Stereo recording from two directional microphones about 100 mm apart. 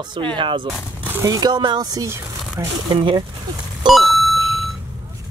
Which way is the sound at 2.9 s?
55° right (ahead or behind).